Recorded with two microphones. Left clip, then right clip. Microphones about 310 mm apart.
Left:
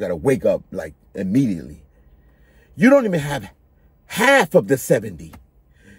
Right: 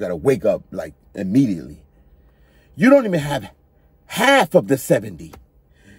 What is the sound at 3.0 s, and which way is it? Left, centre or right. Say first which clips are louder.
Speech: right 1 dB; centre.